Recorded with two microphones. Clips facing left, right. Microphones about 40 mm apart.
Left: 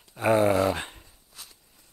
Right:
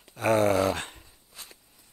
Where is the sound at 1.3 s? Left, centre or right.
Right.